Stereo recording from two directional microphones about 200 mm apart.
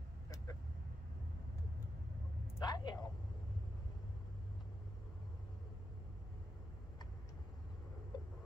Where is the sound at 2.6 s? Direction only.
20° left (ahead or behind).